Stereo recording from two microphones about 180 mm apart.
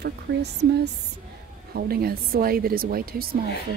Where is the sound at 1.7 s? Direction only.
55° right (ahead or behind).